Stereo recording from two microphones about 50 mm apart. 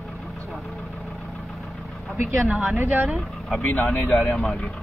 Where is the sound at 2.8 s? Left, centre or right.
Right.